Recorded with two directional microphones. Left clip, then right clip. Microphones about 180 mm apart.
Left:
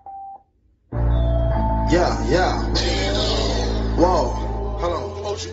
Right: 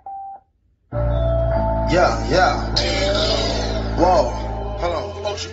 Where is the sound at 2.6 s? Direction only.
15° right (ahead or behind).